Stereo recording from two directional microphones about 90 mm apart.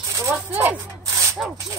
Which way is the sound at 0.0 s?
35° right (ahead or behind).